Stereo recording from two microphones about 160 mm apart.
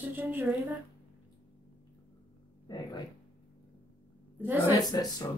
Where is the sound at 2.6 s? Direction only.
25° left (ahead or behind).